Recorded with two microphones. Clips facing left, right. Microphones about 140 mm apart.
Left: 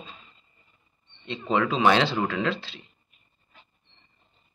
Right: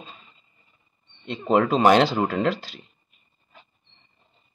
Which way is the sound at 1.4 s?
45° right (ahead or behind).